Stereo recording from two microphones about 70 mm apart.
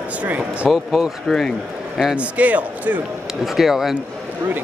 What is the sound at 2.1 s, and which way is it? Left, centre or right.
Speech, right.